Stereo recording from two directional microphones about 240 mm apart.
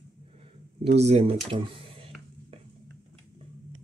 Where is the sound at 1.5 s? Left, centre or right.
Right.